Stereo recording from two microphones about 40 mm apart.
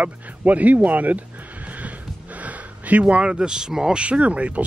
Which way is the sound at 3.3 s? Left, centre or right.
Centre.